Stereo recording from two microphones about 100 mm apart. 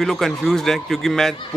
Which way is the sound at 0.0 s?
5° left (ahead or behind).